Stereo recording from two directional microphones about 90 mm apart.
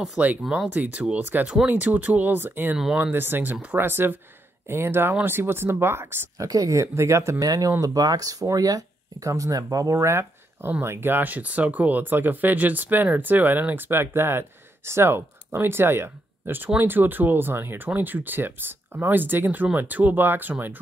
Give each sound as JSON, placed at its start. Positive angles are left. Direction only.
{"t": 0.2, "sound": "speech", "side_deg": -15}
{"t": 6.3, "sound": "speech", "side_deg": -40}
{"t": 7.4, "sound": "speech", "side_deg": -45}